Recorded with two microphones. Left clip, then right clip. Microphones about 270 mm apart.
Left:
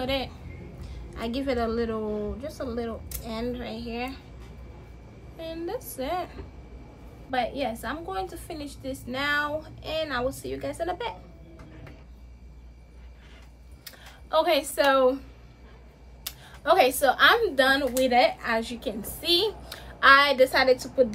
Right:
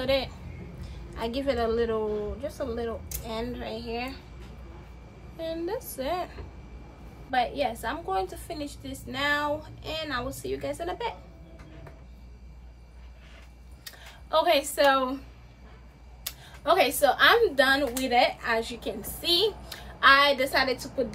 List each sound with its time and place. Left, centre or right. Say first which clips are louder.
0.0 s a sound: right 2 dB; centre
0.7 s a woman's voice: right 2 dB; centre
5.4 s a woman's voice: right 2 dB; centre
13.8 s speech: even; centre
16.3 s a woman's voice: left 2 dB; centre